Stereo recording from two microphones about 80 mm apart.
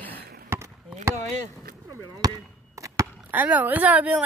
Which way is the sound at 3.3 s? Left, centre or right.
Right.